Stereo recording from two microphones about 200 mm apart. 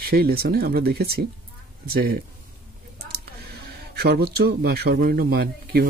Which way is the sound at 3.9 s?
50° right (ahead or behind).